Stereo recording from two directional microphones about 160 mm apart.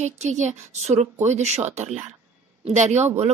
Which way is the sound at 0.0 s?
45° right (ahead or behind).